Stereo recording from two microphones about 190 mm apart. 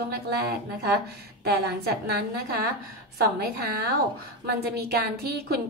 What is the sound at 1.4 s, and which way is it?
A woman's voice, 60° right (ahead or behind).